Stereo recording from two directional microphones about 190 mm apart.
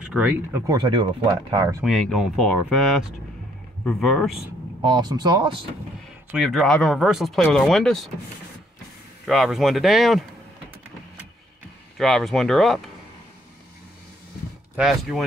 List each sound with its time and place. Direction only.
0.0 s speech: 5° right (ahead or behind)
0.7 s speech: 25° right (ahead or behind)
1.8 s speech: centre (ahead or behind)
4.8 s speech: 25° right (ahead or behind)
6.3 s speech: centre (ahead or behind)
9.2 s speech: centre (ahead or behind)
12.0 s speech: centre (ahead or behind)
14.8 s speech: centre (ahead or behind)